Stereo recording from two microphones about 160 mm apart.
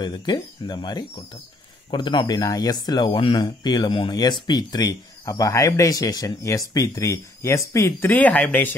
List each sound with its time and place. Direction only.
0.0 s speech: 30° left (ahead or behind); by 8.6 s 10° left (ahead or behind)